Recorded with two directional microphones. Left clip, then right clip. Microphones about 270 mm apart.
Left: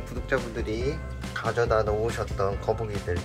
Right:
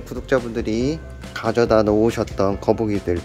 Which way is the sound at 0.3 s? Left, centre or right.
Right.